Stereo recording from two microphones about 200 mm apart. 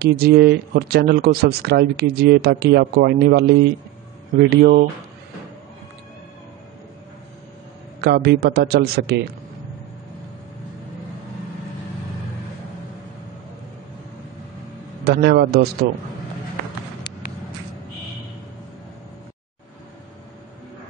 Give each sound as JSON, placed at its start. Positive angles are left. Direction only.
{"t": 0.0, "sound": "speech", "side_deg": -55}
{"t": 8.0, "sound": "speech", "side_deg": -55}
{"t": 15.0, "sound": "speech", "side_deg": -55}